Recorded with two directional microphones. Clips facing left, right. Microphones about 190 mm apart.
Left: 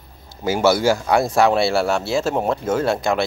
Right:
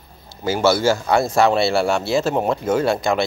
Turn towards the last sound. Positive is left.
turn(degrees=5)  # may be behind; listen again after turning